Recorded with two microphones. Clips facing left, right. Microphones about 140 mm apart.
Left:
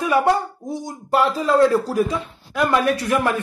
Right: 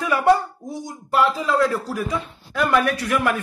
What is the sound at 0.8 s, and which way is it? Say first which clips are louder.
A man's voice: left 1 dB; 40° left (ahead or behind).